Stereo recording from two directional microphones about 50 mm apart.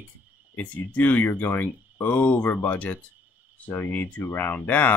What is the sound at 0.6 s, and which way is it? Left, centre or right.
Speech, left.